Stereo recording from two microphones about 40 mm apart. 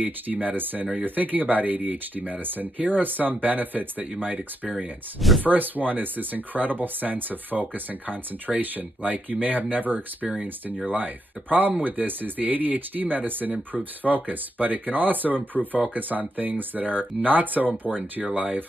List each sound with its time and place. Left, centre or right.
0.0 s speech: right